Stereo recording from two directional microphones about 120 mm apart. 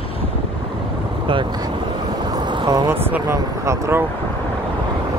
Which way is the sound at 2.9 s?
20° right (ahead or behind).